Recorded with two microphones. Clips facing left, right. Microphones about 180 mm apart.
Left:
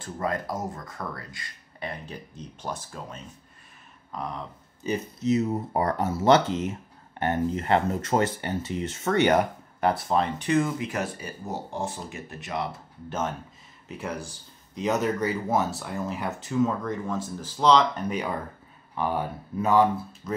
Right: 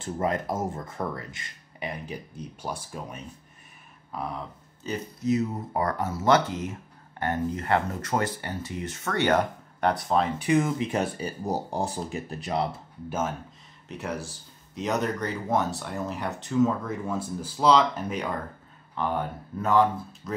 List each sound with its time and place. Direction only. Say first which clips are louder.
0.0 s speech: right 2 dB; 25° right (ahead or behind)
4.1 s a sound: right 1 dB; 5° right (ahead or behind)
4.8 s speech: left 2 dB; 25° left (ahead or behind)
9.8 s speech: even; 5° left (ahead or behind)
10.9 s speech: right 3 dB; 30° right (ahead or behind)
13.8 s speech: even; centre (ahead or behind)